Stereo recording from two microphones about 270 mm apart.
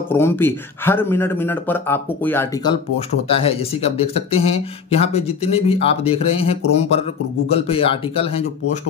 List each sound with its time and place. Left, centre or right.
0.1 s speech: centre